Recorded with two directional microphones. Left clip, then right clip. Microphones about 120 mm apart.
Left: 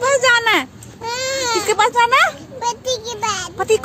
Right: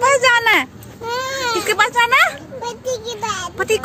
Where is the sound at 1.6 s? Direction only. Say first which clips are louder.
Left 1 dB; 30° left (ahead or behind).